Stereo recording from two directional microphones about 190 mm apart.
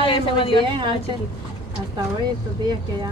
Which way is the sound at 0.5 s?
25° right (ahead or behind).